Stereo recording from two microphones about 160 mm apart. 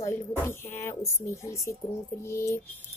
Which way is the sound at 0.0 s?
15° left (ahead or behind).